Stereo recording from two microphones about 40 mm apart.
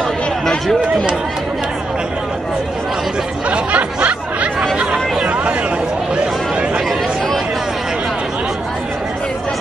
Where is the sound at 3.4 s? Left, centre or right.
Right.